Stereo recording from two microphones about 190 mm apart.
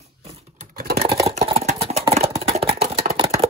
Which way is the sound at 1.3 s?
30° right (ahead or behind).